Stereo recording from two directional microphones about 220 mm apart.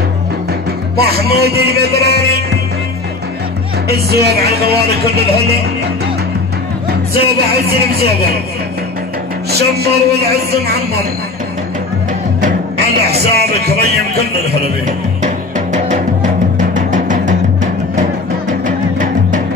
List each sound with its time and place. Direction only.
0.5 s music: 45° right (ahead or behind)
3.9 s speech: 45° right (ahead or behind)
6.9 s speech: 45° right (ahead or behind)
9.5 s speech: 45° right (ahead or behind)
12.4 s music: 40° right (ahead or behind)
13.2 s speech: 45° right (ahead or behind)
14.9 s music: 35° right (ahead or behind)